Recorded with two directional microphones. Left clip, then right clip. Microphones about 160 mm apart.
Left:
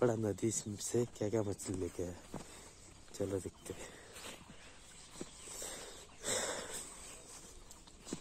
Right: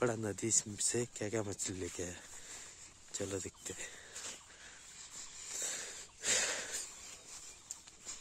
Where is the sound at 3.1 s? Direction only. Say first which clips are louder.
Left 2 dB; 15° right (ahead or behind).